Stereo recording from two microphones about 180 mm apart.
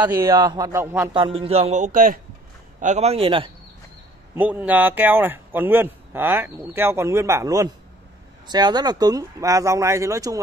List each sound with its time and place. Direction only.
0.0 s speech: 15° right (ahead or behind)
1.1 s speech: 30° right (ahead or behind)
4.4 s speech: 10° right (ahead or behind)